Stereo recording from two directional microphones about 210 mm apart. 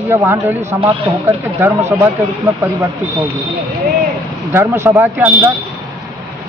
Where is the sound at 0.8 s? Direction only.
25° right (ahead or behind).